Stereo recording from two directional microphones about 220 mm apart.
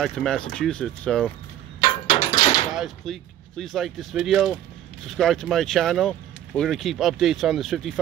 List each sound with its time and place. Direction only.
0.0 s speech: centre (ahead or behind)
1.8 s a sound: 25° left (ahead or behind)
2.7 s speech: centre (ahead or behind)